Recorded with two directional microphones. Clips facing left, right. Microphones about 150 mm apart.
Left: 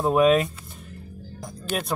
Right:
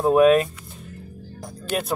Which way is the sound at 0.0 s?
Centre (ahead or behind).